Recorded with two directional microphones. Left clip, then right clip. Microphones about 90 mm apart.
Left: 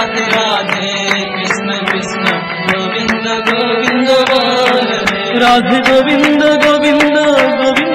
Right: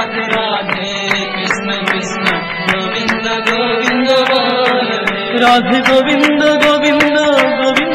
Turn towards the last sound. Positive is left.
turn(degrees=-35)  # may be behind; listen again after turning